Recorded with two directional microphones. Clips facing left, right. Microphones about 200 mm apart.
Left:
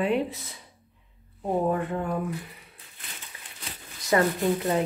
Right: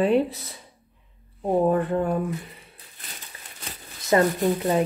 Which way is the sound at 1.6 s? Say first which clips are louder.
Right 5 dB; 35° right (ahead or behind).